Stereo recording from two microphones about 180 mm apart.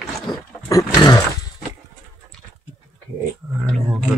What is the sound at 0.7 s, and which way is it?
Roaring cats, 20° left (ahead or behind).